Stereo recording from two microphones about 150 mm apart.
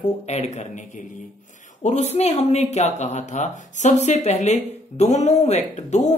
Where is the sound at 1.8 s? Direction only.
50° left (ahead or behind).